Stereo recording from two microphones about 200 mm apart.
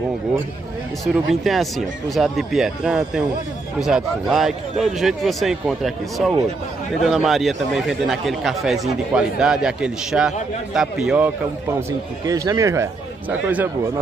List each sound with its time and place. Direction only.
1.0 s speech: centre (ahead or behind)
12.3 s speech: 15° right (ahead or behind)